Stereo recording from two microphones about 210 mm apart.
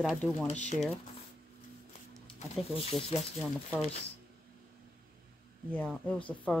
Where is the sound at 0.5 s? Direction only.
30° left (ahead or behind).